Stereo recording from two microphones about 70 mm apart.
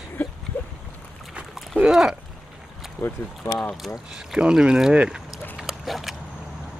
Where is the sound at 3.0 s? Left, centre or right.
Left.